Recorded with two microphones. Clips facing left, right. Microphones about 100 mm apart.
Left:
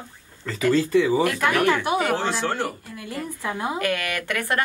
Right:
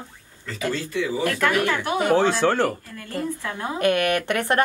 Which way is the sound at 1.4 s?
15° left (ahead or behind).